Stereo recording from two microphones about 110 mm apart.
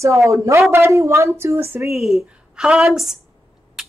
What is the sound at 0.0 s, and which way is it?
Speech, 25° right (ahead or behind).